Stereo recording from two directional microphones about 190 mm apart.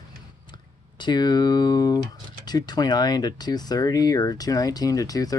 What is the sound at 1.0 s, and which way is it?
Speech, 20° left (ahead or behind).